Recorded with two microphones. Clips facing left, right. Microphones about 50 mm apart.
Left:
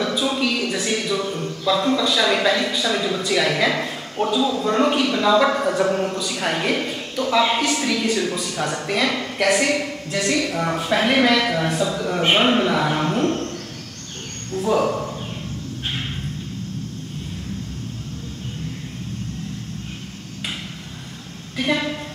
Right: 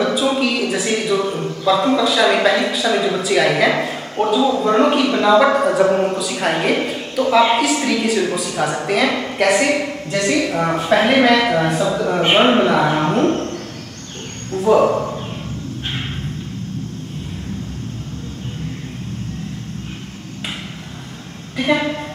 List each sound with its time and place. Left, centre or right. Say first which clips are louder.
0.0 s a man's voice: right 4 dB; centre
14.6 s speech: right 6 dB; centre
14.9 s a sound: right 5 dB; centre
21.5 s a woman's voice: right 4 dB; centre